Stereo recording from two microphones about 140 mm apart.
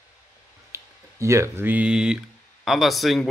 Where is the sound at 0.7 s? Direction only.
20° right (ahead or behind).